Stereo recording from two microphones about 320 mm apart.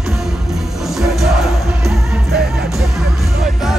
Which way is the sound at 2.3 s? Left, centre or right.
Right.